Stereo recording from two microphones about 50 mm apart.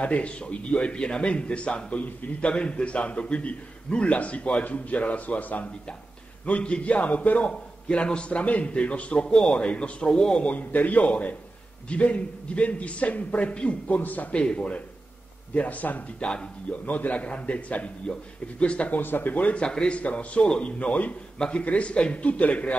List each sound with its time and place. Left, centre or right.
0.0 s a man's voice: left
10.4 s a man's voice: left
14.3 s a man's voice: left
16.2 s speech: centre
16.8 s a man's voice: left
18.9 s a man's voice: left
19.6 s a man's voice: centre